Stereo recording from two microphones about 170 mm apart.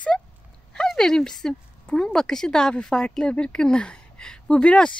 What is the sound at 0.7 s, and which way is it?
A woman's voice, 5° left (ahead or behind).